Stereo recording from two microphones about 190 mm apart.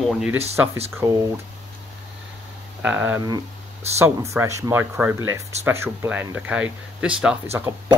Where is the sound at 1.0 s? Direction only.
15° right (ahead or behind).